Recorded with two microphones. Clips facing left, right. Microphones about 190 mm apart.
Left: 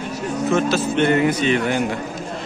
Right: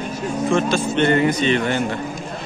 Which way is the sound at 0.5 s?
5° left (ahead or behind).